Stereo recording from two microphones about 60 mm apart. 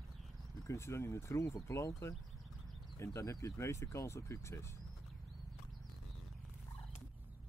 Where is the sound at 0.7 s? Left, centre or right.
Left.